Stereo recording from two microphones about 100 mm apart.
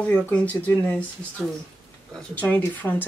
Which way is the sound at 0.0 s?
15° left (ahead or behind).